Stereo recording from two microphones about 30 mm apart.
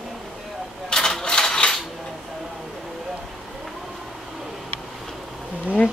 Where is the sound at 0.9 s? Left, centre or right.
Left.